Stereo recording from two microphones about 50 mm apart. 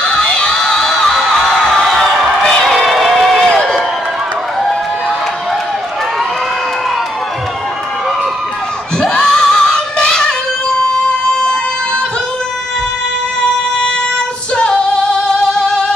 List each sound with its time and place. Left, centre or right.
0.0 s a sound: centre
9.0 s singing: centre
10.9 s yodeling: centre
14.5 s female singing: centre